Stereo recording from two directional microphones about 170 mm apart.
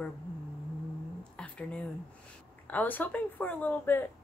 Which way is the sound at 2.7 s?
10° left (ahead or behind).